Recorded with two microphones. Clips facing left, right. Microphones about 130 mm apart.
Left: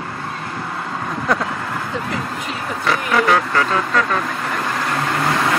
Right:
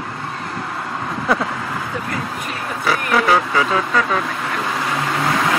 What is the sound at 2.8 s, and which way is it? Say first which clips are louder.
Vehicle: even; centre (ahead or behind).